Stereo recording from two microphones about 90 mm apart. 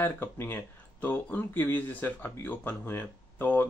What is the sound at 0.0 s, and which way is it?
Speech, 25° left (ahead or behind).